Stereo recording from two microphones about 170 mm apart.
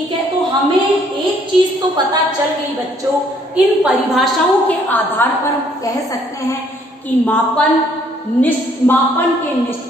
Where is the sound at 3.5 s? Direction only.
Centre (ahead or behind).